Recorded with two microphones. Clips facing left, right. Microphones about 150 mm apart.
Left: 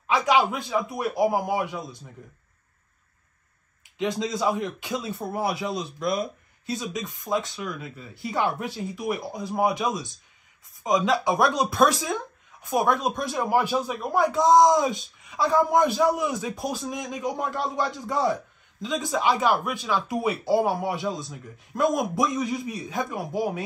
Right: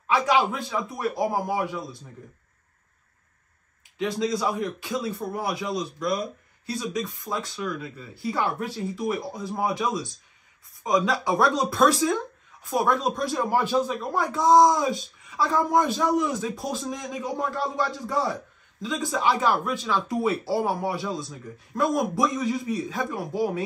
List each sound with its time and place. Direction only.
0.0 s a man's voice: 15° left (ahead or behind)
4.0 s a man's voice: 20° left (ahead or behind)